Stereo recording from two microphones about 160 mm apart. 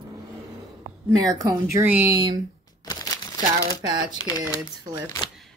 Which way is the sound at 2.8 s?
25° left (ahead or behind).